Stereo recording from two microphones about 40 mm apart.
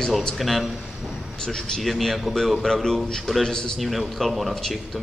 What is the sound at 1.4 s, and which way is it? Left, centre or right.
Speech, centre.